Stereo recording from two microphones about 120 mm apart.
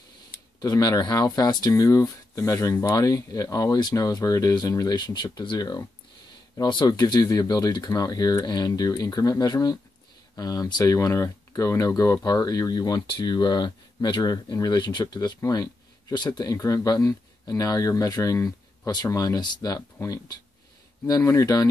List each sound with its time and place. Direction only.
0.6 s speech: 35° left (ahead or behind)